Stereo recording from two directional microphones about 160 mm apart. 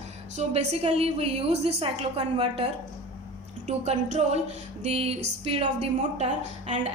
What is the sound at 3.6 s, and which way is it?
A woman's voice, 45° right (ahead or behind).